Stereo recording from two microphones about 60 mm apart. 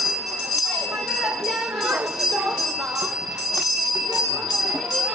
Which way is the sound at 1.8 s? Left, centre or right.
Centre.